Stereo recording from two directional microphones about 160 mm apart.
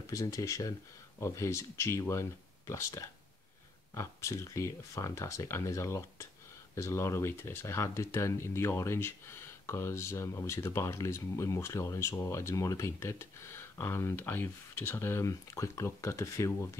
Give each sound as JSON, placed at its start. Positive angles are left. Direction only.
{"t": 0.0, "sound": "speech", "side_deg": 20}